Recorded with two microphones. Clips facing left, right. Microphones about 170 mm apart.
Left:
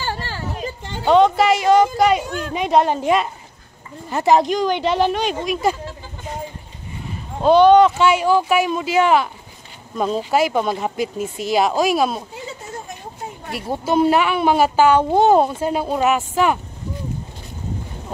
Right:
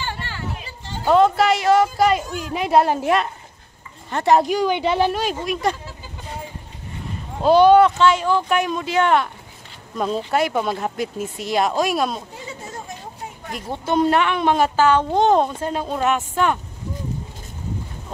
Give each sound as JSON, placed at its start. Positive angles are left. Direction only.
{"t": 0.0, "sound": "children playing", "side_deg": 40}
{"t": 1.0, "sound": "speech", "side_deg": 0}
{"t": 7.4, "sound": "speech", "side_deg": -5}
{"t": 8.0, "sound": "speech", "side_deg": 10}
{"t": 13.5, "sound": "a woman's voice", "side_deg": 5}